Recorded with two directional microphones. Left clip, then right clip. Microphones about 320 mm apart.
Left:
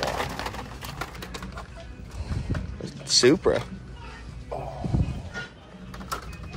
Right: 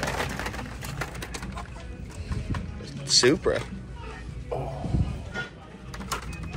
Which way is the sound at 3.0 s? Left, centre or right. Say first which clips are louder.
Left 1 dB; centre.